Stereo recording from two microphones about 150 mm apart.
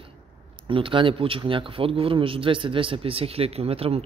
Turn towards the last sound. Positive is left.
turn(degrees=-40)  # may be behind; listen again after turning